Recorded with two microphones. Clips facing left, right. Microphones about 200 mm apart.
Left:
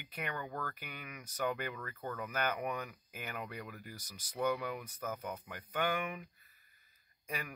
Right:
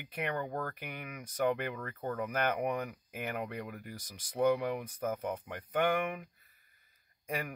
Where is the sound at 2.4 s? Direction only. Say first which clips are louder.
Right 4 dB; 60° right (ahead or behind).